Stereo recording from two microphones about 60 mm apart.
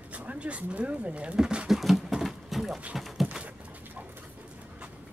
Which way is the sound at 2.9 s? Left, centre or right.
Centre.